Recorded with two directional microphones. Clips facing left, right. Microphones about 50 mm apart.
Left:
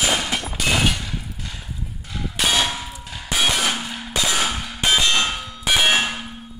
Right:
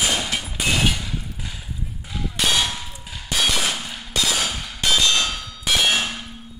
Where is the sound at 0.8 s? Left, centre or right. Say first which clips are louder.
Even; centre.